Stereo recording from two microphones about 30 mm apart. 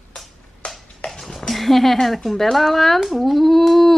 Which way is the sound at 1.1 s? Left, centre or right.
Centre.